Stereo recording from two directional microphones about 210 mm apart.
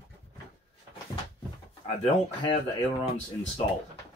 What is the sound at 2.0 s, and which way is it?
Speech, 25° left (ahead or behind).